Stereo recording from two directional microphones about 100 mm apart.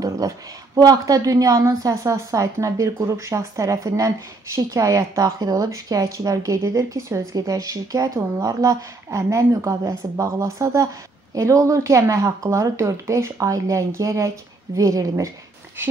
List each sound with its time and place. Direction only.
0.2 s a woman's voice: 35° right (ahead or behind)